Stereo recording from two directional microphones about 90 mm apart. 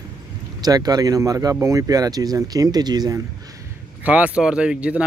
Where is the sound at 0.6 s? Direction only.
45° right (ahead or behind).